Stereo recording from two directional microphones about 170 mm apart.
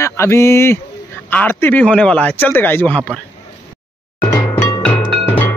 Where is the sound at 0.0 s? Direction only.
15° left (ahead or behind).